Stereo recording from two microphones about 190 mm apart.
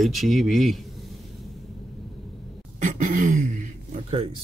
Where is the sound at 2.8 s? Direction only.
40° right (ahead or behind).